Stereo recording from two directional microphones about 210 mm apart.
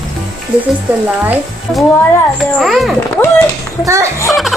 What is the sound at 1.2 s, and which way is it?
Speech, 5° right (ahead or behind).